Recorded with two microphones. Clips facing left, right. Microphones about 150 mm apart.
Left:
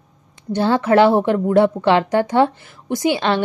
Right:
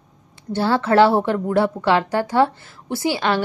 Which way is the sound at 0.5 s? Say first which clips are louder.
Left 2 dB; 15° left (ahead or behind).